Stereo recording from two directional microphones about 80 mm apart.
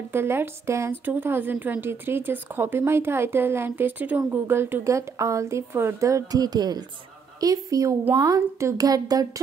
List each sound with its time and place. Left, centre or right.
0.1 s speech: right
4.8 s a woman's voice: right